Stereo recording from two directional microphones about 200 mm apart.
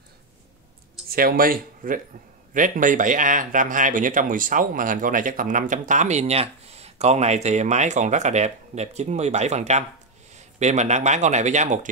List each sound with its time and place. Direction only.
1.1 s speech: 45° right (ahead or behind)